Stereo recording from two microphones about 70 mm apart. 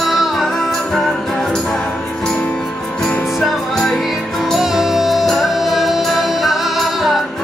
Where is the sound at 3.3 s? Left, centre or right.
Centre.